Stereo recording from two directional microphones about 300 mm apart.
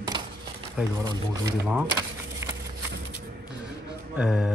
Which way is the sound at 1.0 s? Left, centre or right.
Centre.